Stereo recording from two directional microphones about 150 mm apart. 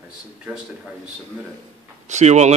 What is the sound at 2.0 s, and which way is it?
Speech, 50° right (ahead or behind).